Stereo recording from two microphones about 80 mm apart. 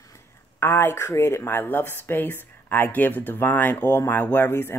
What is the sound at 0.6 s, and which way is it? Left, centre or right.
Speech, left.